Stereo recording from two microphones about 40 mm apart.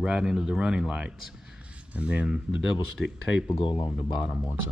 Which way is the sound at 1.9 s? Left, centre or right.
Right.